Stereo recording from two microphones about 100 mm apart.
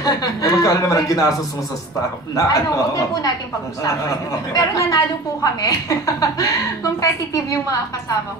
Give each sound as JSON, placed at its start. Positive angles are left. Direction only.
{"t": 0.0, "sound": "a woman's voice", "side_deg": 40}
{"t": 2.3, "sound": "a woman's voice", "side_deg": 35}